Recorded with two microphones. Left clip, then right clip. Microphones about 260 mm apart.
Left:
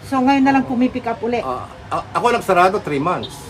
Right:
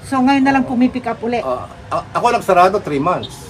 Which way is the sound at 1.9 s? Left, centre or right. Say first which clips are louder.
Right 2 dB; centre.